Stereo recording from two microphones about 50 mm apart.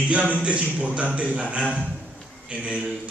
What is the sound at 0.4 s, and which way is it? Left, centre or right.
A man's voice, right.